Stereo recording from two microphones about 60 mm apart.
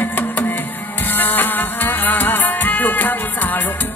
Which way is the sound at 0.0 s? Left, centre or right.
Left.